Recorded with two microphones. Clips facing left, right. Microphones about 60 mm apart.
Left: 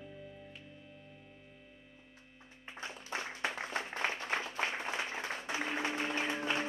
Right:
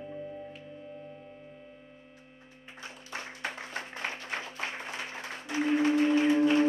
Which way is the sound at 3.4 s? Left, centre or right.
Left.